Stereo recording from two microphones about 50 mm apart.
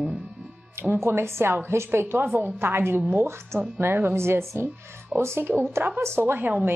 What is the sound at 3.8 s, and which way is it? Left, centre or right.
A woman's voice, right.